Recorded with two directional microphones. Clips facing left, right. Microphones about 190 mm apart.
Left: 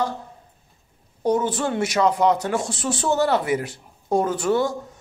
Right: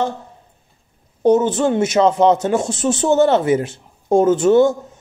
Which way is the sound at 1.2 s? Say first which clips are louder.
Right 7 dB; 25° right (ahead or behind).